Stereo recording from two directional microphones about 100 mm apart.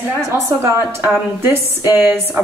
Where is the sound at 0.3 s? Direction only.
25° right (ahead or behind).